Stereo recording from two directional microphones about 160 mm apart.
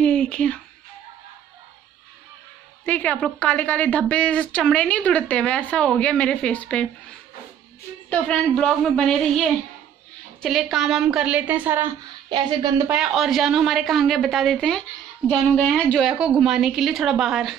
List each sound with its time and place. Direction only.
0.0 s music: 5° left (ahead or behind)
2.8 s a woman's voice: 10° left (ahead or behind); by 11.9 s 10° right (ahead or behind)
12.3 s speech: 30° right (ahead or behind)
12.9 s a woman's voice: centre (ahead or behind)